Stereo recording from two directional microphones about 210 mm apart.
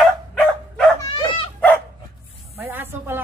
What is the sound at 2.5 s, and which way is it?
Snake, 10° right (ahead or behind).